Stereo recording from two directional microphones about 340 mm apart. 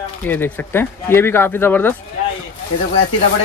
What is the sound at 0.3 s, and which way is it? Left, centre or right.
Speech, centre.